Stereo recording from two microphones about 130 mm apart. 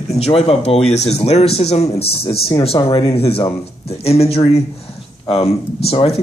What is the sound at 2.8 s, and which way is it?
Speech, 30° left (ahead or behind).